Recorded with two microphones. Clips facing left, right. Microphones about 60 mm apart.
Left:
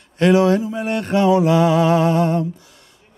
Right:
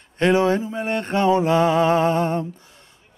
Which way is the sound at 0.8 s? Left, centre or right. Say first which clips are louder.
Left 3 dB; right.